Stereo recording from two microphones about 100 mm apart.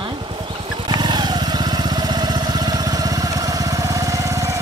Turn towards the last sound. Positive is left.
turn(degrees=-35)  # may be behind; listen again after turning